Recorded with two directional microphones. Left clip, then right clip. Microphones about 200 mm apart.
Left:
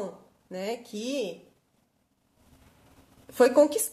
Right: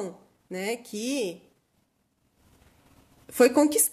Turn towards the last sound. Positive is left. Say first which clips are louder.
# even
turn(degrees=-45)  # may be behind; listen again after turning